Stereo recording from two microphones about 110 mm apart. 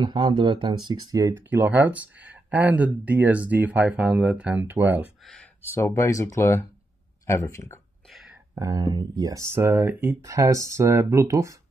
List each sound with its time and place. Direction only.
0.0 s speech: 45° right (ahead or behind)
1.3 s speech: 15° right (ahead or behind)
5.2 s a sound: centre (ahead or behind)
5.6 s speech: 25° left (ahead or behind)
8.1 s a sound: centre (ahead or behind)
8.5 s speech: 35° right (ahead or behind); by 10.1 s 20° right (ahead or behind)
10.2 s speech: 30° right (ahead or behind)